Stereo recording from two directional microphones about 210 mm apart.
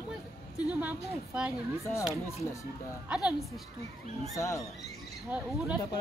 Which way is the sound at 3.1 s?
5° right (ahead or behind).